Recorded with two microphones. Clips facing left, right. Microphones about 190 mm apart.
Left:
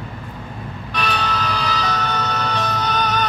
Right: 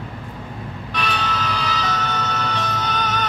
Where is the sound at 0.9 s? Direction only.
40° left (ahead or behind).